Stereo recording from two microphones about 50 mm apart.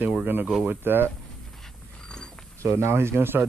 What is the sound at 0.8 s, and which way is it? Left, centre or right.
Speech, right.